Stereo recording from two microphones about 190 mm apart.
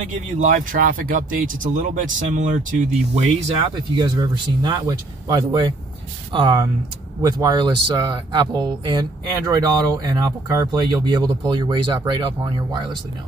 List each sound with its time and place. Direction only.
0.4 s speech: 45° right (ahead or behind)
3.7 s speech: 25° right (ahead or behind)